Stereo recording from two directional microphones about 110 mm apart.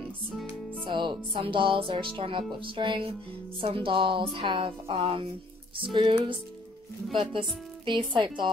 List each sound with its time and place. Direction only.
0.8 s speech: 45° right (ahead or behind)